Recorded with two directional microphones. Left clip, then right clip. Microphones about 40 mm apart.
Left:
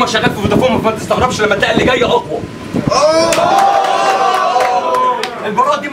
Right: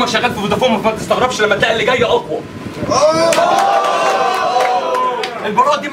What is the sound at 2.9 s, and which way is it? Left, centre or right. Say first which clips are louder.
Speech: left 1 dB; left.